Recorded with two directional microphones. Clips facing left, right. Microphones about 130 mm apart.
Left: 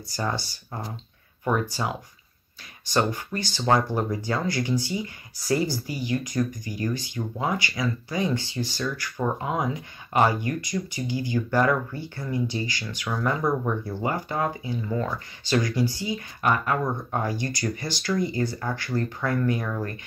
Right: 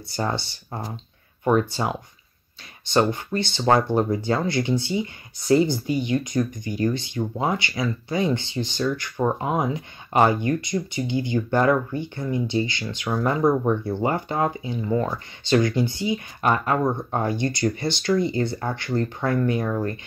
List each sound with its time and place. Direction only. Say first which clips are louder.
0.1 s speech: right 3 dB; 25° right (ahead or behind)